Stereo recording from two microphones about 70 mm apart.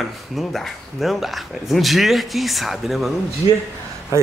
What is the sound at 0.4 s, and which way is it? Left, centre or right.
Speech, centre.